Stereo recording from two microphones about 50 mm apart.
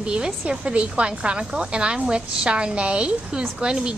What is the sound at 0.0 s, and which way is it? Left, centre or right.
A woman's voice, centre.